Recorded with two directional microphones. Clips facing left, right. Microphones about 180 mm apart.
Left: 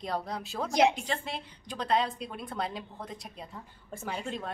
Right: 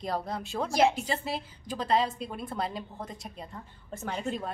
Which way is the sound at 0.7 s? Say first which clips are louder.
Even; 20° left (ahead or behind).